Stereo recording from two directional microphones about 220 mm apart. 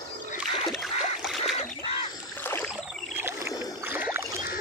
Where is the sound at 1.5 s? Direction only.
25° left (ahead or behind).